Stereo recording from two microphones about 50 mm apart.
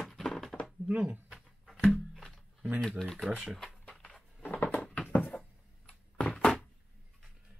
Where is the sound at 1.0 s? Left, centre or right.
Right.